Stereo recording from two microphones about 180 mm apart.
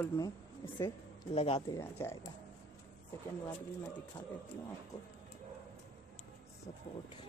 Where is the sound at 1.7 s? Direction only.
15° left (ahead or behind).